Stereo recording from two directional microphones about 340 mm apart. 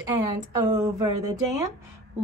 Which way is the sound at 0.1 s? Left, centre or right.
Centre.